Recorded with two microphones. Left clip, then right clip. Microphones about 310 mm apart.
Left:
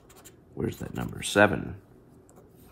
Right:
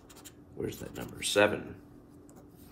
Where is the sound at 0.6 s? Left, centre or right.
Centre.